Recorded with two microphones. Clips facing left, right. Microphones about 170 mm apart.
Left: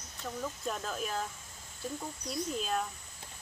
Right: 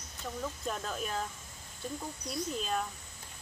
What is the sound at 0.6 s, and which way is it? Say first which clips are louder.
Speech: left 1 dB; centre (ahead or behind).